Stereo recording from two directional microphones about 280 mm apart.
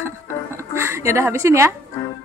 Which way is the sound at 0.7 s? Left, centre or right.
Centre.